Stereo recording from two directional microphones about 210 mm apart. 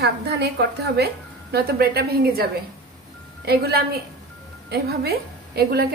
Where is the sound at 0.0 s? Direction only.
50° right (ahead or behind).